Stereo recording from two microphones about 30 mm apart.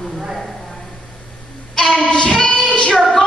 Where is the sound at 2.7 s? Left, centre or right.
Left.